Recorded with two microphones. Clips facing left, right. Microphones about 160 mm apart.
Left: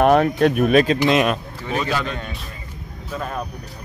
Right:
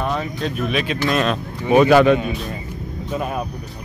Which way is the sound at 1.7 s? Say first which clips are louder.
Right 12 dB; 60° right (ahead or behind).